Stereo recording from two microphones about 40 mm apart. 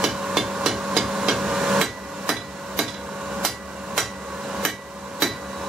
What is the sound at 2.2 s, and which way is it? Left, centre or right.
Hammer, centre.